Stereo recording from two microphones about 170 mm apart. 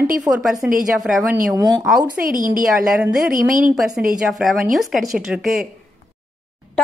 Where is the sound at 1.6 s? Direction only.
25° right (ahead or behind).